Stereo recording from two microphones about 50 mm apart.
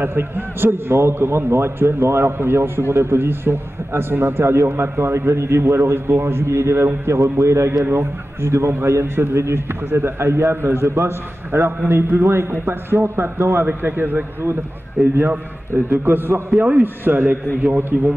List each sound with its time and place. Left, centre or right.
0.0 s a man's voice: right
7.8 s a man's voice: right
16.5 s a man's voice: right
16.8 s a man's voice: right